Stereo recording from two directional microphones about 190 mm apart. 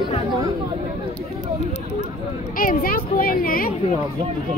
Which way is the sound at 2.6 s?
45° left (ahead or behind).